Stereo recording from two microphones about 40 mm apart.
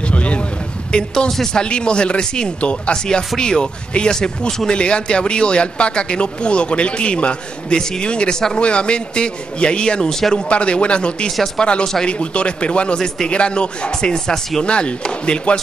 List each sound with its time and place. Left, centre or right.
0.1 s vehicle: left
0.9 s speech: left
1.6 s speech: left
14.1 s speech: centre
14.6 s speech: left